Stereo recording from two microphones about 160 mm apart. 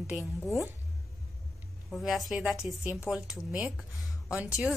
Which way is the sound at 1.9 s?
Centre (ahead or behind).